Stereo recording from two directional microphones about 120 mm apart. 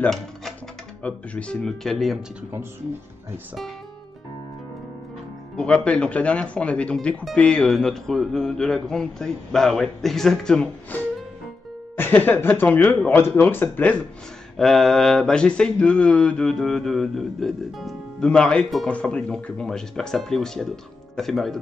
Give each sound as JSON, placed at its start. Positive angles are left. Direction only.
{"t": 0.0, "sound": "music", "side_deg": 5}
{"t": 1.0, "sound": "speech", "side_deg": 10}
{"t": 5.6, "sound": "speech", "side_deg": 10}
{"t": 12.0, "sound": "speech", "side_deg": 20}
{"t": 14.6, "sound": "speech", "side_deg": 0}